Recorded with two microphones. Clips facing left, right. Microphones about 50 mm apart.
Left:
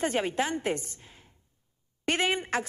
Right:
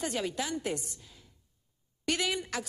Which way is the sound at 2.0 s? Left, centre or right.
Left.